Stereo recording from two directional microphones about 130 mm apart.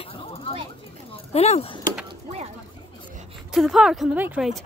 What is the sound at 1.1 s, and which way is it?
Speech, 50° left (ahead or behind).